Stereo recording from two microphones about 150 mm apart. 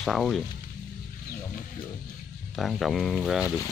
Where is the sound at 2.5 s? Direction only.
Centre (ahead or behind).